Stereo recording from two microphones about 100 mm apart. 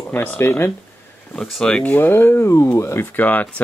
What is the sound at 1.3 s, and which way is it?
Speech, 5° left (ahead or behind).